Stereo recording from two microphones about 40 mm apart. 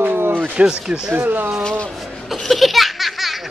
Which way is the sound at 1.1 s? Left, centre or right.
Right.